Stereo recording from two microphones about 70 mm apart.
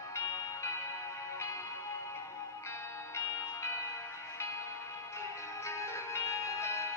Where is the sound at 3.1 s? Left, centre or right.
Left.